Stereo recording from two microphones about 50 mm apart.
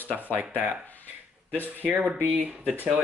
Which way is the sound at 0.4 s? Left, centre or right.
Right.